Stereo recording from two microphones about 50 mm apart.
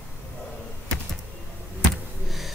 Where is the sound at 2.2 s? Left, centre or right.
Centre.